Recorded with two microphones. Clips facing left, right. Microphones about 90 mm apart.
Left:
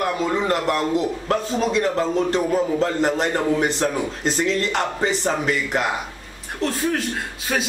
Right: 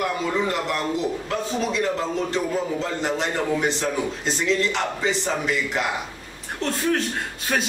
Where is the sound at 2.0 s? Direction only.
45° left (ahead or behind).